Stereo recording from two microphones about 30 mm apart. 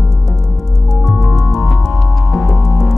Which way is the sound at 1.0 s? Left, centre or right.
Centre.